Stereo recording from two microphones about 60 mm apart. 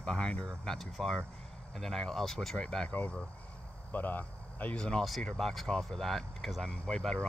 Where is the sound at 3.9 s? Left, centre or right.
Left.